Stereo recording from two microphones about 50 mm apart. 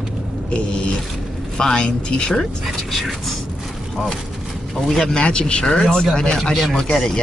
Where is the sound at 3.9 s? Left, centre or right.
Centre.